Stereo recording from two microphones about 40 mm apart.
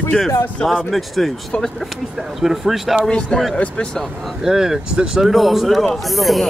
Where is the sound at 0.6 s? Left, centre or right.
Left.